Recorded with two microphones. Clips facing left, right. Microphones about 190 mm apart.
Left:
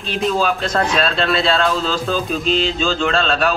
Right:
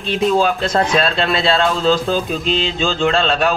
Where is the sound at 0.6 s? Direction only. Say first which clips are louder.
Right 2 dB; 35° right (ahead or behind).